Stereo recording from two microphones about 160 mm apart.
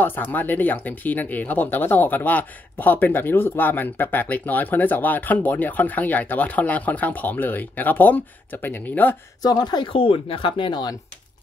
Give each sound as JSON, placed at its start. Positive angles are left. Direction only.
{"t": 0.0, "sound": "speech", "side_deg": 10}
{"t": 9.4, "sound": "speech", "side_deg": 25}